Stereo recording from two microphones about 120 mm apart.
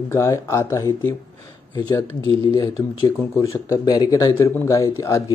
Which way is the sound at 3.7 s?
35° left (ahead or behind).